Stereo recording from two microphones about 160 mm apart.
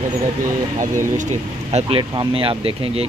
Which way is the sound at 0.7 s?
50° right (ahead or behind).